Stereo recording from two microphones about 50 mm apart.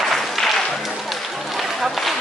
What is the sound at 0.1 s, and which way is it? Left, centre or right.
Applause, centre.